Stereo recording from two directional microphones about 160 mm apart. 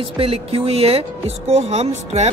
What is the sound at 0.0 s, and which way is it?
Speech, 35° right (ahead or behind).